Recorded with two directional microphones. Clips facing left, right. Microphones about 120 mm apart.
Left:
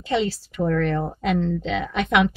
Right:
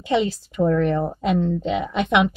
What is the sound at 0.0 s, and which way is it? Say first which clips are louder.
Speech: right 2 dB; 20° right (ahead or behind).